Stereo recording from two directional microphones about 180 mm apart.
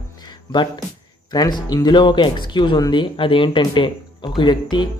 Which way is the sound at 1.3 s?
25° left (ahead or behind).